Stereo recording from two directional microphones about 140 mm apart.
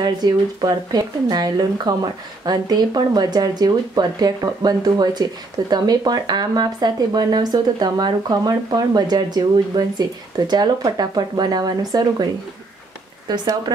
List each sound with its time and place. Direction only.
0.0 s speech: 30° right (ahead or behind)
13.3 s speech: 30° right (ahead or behind)